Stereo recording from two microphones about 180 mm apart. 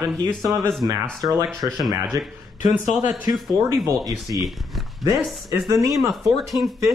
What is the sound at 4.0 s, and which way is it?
Speech, centre (ahead or behind).